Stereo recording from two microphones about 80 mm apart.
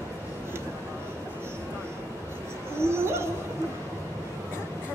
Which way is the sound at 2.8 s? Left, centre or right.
Right.